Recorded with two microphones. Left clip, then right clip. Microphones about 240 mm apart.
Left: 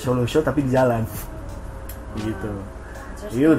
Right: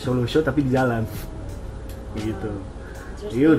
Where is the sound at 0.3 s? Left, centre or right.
Left.